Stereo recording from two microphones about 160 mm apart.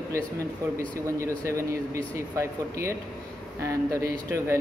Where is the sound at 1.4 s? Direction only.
20° right (ahead or behind).